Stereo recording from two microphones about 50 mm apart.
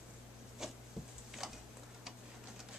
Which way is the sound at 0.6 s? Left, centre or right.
Centre.